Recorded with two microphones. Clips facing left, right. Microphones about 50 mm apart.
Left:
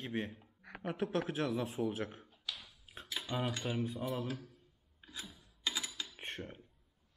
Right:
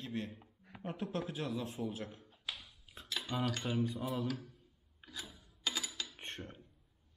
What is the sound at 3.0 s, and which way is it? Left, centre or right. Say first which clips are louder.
Speech: even; centre.